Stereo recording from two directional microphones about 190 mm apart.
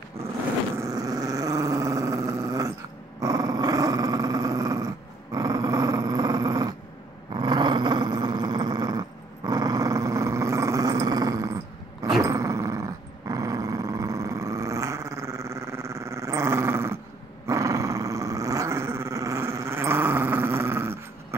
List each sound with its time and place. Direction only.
0.7 s dog: 20° right (ahead or behind)
3.2 s growling: 20° right (ahead or behind)
7.3 s dog: 20° right (ahead or behind)
9.5 s growling: 20° right (ahead or behind)
12.2 s dog: 15° right (ahead or behind)
13.3 s growling: 15° right (ahead or behind)
17.5 s dog: 15° right (ahead or behind)